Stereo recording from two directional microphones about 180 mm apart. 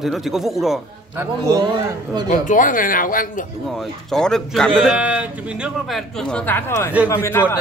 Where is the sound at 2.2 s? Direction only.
45° left (ahead or behind).